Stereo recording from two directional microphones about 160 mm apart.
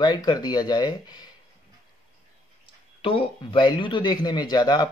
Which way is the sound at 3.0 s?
35° left (ahead or behind).